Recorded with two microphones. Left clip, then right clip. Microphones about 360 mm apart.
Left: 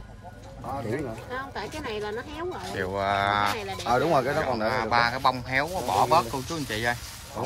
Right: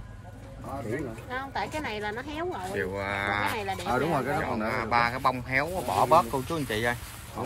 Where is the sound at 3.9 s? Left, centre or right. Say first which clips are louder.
Left 6 dB; left.